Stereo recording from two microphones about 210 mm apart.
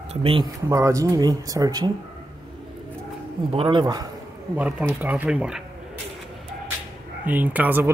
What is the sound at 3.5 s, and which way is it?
Speech, 25° right (ahead or behind).